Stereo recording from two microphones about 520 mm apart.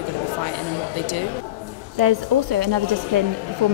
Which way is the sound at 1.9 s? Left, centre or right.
Right.